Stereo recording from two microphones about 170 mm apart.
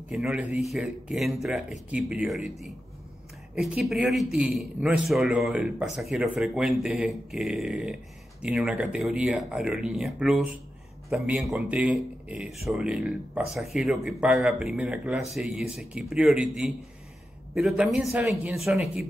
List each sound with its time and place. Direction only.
0.1 s speech: 5° right (ahead or behind)
3.5 s speech: 5° right (ahead or behind)